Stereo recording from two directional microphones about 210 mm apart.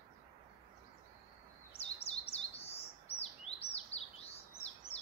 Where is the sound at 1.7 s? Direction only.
30° left (ahead or behind).